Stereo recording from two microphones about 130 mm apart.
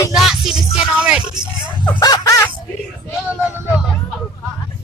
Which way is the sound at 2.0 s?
30° left (ahead or behind).